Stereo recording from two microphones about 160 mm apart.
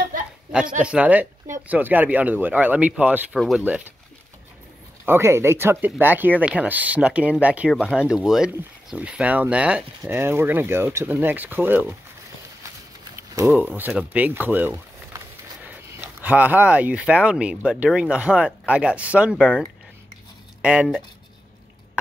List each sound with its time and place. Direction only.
0.5 s speech: 5° right (ahead or behind)
3.3 s speech: centre (ahead or behind)
5.0 s speech: 15° right (ahead or behind)
13.1 s a sound: 20° right (ahead or behind)
13.5 s speech: 10° right (ahead or behind)
20.6 s speech: 5° right (ahead or behind)